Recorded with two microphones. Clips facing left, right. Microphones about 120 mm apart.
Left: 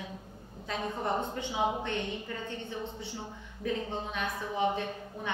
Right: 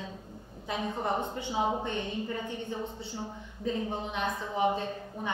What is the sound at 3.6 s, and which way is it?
A woman's voice, 20° right (ahead or behind).